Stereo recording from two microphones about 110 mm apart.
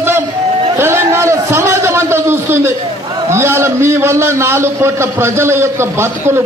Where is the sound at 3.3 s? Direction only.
25° right (ahead or behind).